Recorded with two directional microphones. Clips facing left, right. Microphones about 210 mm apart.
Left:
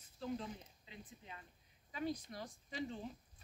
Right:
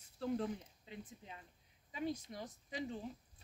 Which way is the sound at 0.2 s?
60° right (ahead or behind).